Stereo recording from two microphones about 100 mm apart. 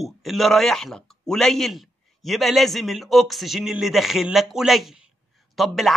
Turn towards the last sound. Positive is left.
turn(degrees=0)  # may be behind; listen again after turning